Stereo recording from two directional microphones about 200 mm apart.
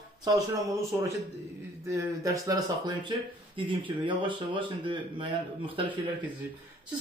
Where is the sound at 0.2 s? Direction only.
15° right (ahead or behind).